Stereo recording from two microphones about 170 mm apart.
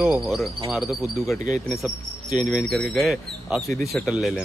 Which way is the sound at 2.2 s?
45° right (ahead or behind).